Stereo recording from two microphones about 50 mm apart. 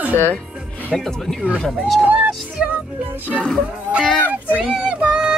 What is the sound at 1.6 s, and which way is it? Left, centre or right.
Speech, centre.